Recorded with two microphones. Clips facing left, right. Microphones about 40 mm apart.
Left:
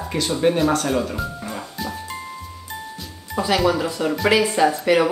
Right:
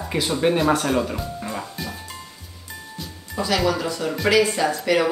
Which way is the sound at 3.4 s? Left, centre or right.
Centre.